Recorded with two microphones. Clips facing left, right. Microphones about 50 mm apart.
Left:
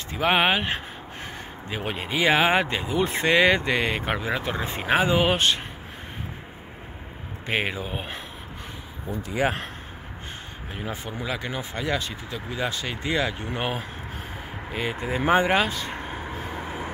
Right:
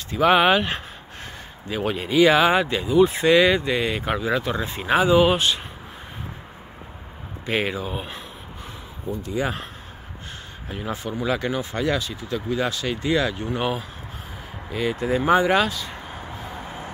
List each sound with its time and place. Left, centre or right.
0.1 s speech: left
1.7 s speech: left
3.5 s speech: left
7.4 s speech: left
10.7 s speech: centre
11.2 s speech: centre
15.7 s speech: left